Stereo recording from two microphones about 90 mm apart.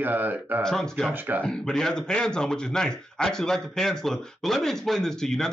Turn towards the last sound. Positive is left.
turn(degrees=5)  # may be behind; listen again after turning